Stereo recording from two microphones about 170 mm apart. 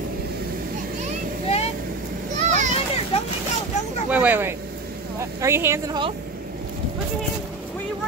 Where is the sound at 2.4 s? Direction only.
45° right (ahead or behind).